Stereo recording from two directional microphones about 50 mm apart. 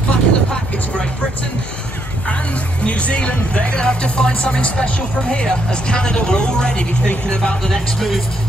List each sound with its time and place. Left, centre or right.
0.1 s vehicle: centre
2.2 s speech: left
7.6 s speech: centre